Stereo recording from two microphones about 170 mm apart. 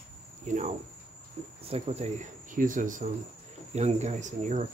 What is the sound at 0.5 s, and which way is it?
Speech, 45° right (ahead or behind).